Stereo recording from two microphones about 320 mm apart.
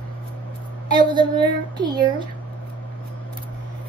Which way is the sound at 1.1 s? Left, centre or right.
Centre.